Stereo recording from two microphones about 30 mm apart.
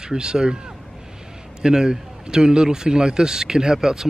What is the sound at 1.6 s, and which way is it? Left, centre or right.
A man's voice, right.